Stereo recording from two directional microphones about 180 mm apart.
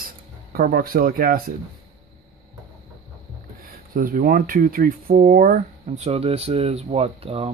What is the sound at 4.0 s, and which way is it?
Speech, 50° right (ahead or behind).